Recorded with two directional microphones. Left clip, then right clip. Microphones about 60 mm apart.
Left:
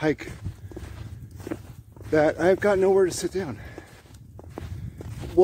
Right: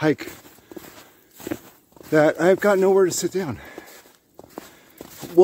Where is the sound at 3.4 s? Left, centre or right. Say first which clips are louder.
Right 4 dB; right.